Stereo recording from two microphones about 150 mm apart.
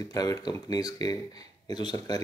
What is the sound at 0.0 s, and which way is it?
Speech, 25° left (ahead or behind).